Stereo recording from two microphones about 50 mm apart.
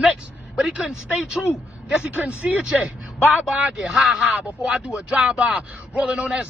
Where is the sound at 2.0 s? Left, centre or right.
Right; by 4.4 s centre.